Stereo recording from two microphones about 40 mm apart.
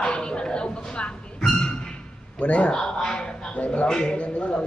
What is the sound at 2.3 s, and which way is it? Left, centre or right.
Speech, left.